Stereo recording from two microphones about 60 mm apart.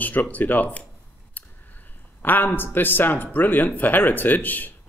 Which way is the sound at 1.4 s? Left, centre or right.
Left.